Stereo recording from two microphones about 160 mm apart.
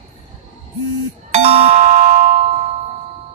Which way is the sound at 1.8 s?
60° right (ahead or behind).